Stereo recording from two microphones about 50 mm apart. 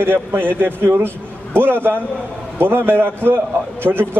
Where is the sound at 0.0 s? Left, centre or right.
Right.